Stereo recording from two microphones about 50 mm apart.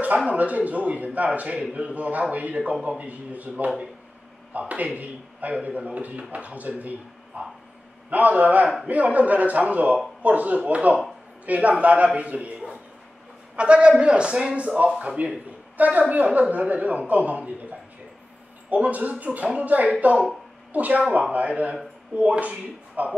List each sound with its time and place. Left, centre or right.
0.3 s a man's voice: right
13.6 s a man's voice: right